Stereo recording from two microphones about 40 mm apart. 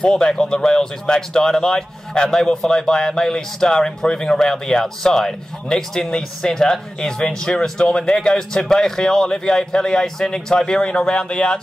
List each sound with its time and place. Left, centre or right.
0.0 s speech: left